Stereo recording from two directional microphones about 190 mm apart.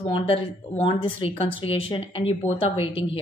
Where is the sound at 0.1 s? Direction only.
25° left (ahead or behind).